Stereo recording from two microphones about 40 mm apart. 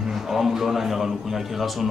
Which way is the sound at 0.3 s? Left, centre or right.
Centre.